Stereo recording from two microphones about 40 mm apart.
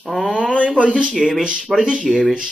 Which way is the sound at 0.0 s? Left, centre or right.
Centre.